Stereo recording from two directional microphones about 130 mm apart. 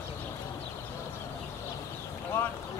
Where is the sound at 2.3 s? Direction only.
15° left (ahead or behind).